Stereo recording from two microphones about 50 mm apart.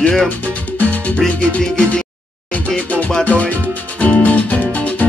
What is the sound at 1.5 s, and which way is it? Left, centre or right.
Speech, left.